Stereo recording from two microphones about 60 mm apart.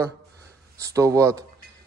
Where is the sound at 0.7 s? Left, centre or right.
Right.